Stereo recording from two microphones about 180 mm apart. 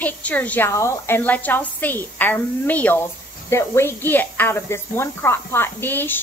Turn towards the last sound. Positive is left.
turn(degrees=10)  # may be behind; listen again after turning